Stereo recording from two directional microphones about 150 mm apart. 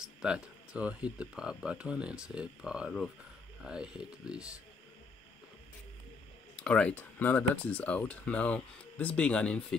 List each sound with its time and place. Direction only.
0.0 s speech: 5° right (ahead or behind)
6.5 s speech: 5° left (ahead or behind)